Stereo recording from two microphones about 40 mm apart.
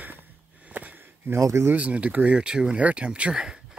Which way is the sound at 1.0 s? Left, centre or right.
Right.